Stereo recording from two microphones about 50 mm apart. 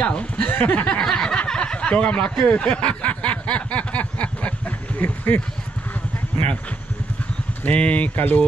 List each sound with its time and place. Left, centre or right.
0.0 s speech: left
0.5 s a sound: left
0.9 s a sound: centre
1.5 s speech: centre
2.4 s snicker: left
7.6 s speech: left